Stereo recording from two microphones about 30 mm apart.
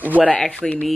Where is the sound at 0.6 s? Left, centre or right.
Centre.